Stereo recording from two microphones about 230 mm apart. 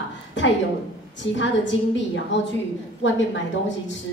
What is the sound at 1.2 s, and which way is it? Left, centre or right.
A man's voice, left.